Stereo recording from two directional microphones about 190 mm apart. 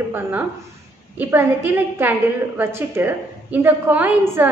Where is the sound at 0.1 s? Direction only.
10° right (ahead or behind).